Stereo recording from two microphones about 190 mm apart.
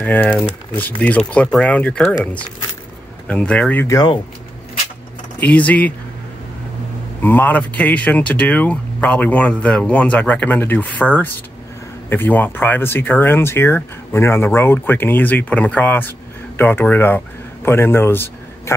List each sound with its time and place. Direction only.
0.0 s speech: 10° left (ahead or behind)
3.3 s speech: 5° left (ahead or behind)
3.8 s speech: 20° left (ahead or behind)
5.4 s speech: 5° left (ahead or behind)
7.2 s speech: 10° left (ahead or behind)